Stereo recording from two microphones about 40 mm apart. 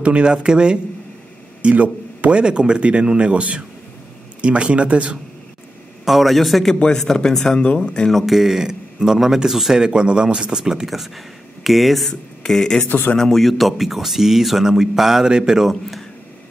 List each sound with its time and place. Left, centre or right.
0.0 s speech: right
0.3 s speech: right
1.6 s speech: right
2.4 s speech: right
6.0 s speech: centre
7.6 s speech: left
8.1 s speech: centre
9.8 s speech: right; by 12.1 s centre
12.1 s speech: centre
12.8 s a man's voice: left
13.2 s speech: centre